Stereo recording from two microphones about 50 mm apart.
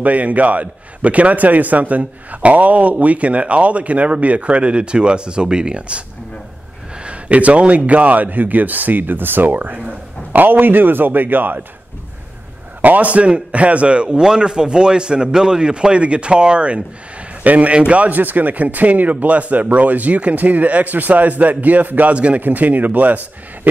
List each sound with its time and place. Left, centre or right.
0.0 s a man's voice: right
12.8 s a man's voice: right